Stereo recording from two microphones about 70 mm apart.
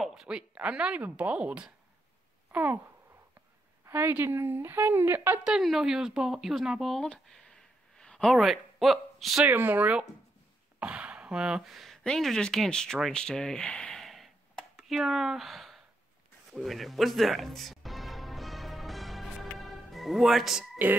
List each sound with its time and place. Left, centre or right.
0.0 s speech: centre
2.5 s speech: right
3.8 s a woman's voice: right
5.6 s speech: centre
8.0 s a sound: centre
8.4 s speech: centre
9.5 s speech: right
11.6 s speech: centre
14.0 s a sound: centre
14.9 s speech: centre
16.5 s music: centre